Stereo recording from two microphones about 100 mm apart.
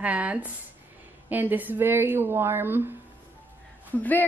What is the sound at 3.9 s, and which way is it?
Speech, 15° left (ahead or behind).